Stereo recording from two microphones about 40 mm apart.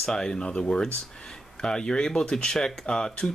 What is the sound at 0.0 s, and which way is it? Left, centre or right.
Speech, centre.